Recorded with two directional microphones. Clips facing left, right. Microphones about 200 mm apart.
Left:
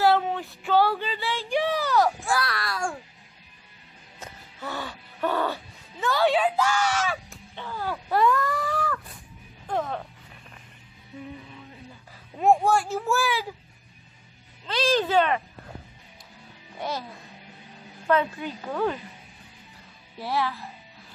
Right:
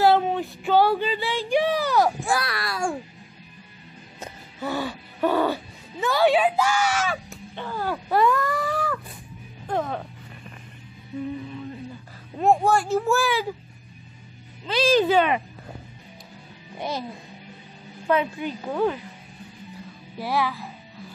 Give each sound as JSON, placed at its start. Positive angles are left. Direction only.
{"t": 0.0, "sound": "child singing", "side_deg": -20}
{"t": 4.2, "sound": "gasp", "side_deg": -10}
{"t": 8.1, "sound": "a sound", "side_deg": -5}
{"t": 12.4, "sound": "a child's voice", "side_deg": 10}
{"t": 14.7, "sound": "a child's voice", "side_deg": -5}
{"t": 16.7, "sound": "speech", "side_deg": -15}
{"t": 18.0, "sound": "speech", "side_deg": -15}
{"t": 20.2, "sound": "a child's voice", "side_deg": -5}